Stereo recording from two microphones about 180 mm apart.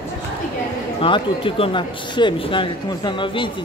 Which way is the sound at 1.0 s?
30° left (ahead or behind).